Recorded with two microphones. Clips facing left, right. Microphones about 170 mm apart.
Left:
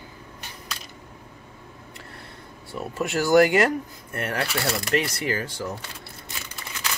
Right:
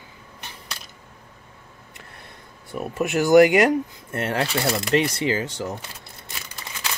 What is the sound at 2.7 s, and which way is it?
Speech, 20° right (ahead or behind).